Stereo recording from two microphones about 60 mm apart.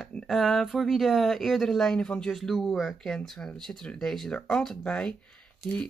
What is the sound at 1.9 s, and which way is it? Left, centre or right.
Speech, centre.